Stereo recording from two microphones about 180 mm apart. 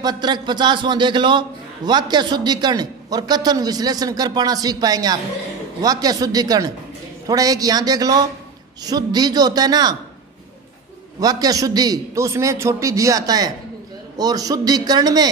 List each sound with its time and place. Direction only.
0.0 s a man's voice: 25° right (ahead or behind)
11.1 s a man's voice: 20° right (ahead or behind)